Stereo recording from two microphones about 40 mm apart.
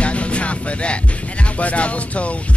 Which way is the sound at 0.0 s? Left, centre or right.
Left.